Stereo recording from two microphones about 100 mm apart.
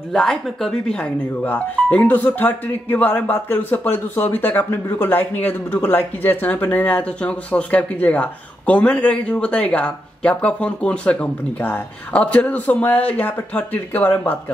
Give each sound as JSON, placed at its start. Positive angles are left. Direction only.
{"t": 0.1, "sound": "speech", "side_deg": 5}